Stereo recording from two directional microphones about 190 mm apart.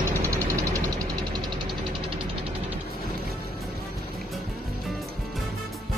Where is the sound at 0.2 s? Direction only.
15° right (ahead or behind).